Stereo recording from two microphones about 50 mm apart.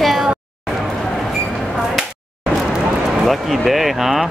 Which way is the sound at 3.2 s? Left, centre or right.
Centre.